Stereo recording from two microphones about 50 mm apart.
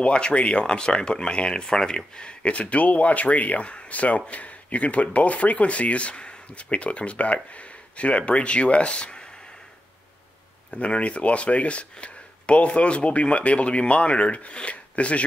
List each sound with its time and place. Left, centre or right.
0.0 s speech: left
10.7 s speech: left